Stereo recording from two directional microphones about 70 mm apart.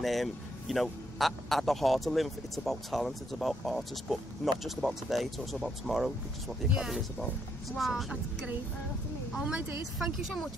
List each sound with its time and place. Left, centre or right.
0.0 s a man's voice: centre
9.4 s a woman's voice: centre
9.9 s a man's voice: centre